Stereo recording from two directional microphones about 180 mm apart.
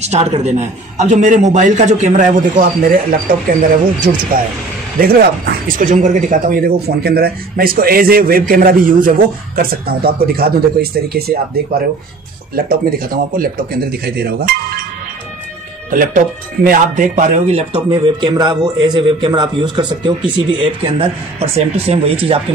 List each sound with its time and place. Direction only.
0.1 s a man's voice: 35° right (ahead or behind); by 14.5 s 60° right (ahead or behind)
15.9 s a man's voice: 50° right (ahead or behind); by 22.1 s 35° right (ahead or behind)